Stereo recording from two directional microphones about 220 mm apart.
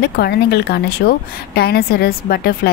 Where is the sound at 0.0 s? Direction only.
45° left (ahead or behind).